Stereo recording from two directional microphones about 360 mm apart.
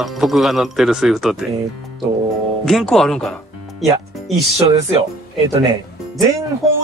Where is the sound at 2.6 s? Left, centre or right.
Centre.